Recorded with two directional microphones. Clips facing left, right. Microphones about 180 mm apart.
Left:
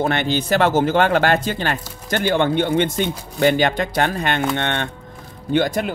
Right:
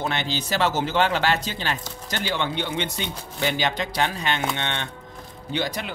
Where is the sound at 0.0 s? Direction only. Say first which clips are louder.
Left 7 dB; 55° left (ahead or behind).